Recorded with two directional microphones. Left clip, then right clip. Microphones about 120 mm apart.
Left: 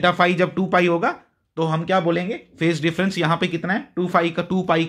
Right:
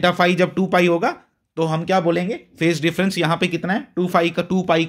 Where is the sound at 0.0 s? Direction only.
35° right (ahead or behind).